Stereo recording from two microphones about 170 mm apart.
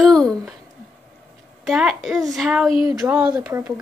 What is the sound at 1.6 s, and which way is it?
A woman's voice, centre (ahead or behind).